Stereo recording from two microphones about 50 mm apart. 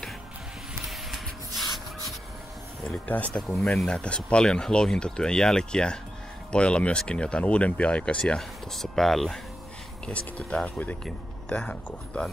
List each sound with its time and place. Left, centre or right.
0.8 s a sound: centre
3.1 s speech: left
3.6 s speech: centre
8.4 s speech: centre
10.0 s speech: left